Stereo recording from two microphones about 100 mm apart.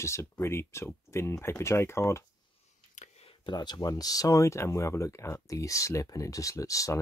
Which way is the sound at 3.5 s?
45° left (ahead or behind).